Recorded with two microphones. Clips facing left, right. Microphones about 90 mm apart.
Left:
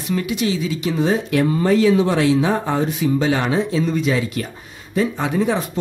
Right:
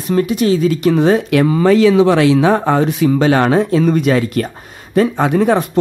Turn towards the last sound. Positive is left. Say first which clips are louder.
# right 7 dB
turn(degrees=-60)  # may be behind; listen again after turning